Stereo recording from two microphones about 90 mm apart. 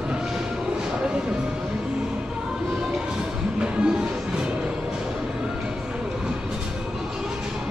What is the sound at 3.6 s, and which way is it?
Music, 10° right (ahead or behind).